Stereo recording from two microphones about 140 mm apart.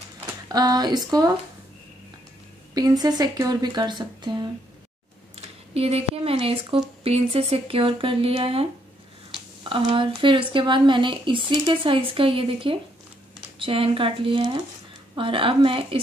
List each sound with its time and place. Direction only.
0.5 s speech: 30° right (ahead or behind)
2.7 s speech: 30° right (ahead or behind)
5.8 s a woman's voice: 45° right (ahead or behind)